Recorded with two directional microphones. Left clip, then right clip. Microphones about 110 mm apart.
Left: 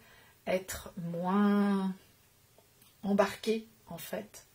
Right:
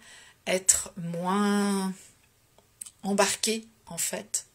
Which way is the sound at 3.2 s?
10° right (ahead or behind).